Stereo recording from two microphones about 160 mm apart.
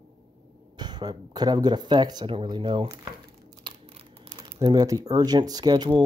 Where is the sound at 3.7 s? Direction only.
30° right (ahead or behind).